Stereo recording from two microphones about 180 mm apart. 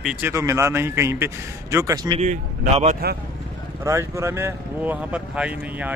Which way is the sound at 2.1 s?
45° right (ahead or behind).